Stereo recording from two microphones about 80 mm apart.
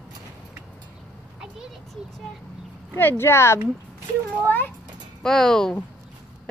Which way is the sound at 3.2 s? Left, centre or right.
Left.